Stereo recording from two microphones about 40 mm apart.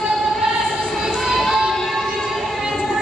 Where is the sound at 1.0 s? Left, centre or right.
Centre.